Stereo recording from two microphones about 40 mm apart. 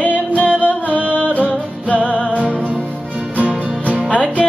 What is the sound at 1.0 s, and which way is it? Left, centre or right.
Music, right.